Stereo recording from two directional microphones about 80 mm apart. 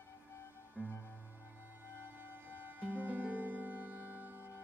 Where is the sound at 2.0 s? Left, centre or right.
Right.